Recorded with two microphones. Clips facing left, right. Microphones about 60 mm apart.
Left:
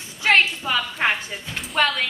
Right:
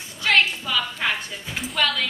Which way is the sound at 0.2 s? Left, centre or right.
Left.